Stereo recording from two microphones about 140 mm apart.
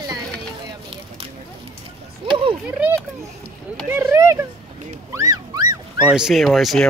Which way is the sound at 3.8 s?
15° right (ahead or behind).